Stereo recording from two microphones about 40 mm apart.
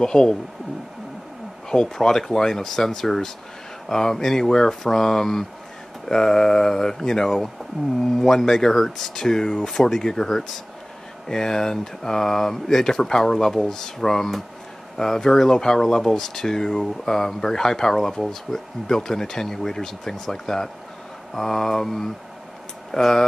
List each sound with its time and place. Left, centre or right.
0.0 s speech: centre
1.7 s speech: centre